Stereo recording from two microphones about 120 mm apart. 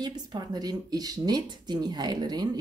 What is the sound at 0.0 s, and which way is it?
Speech, 35° right (ahead or behind).